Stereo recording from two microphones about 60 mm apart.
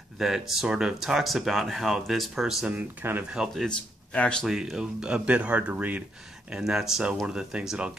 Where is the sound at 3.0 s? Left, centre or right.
Right.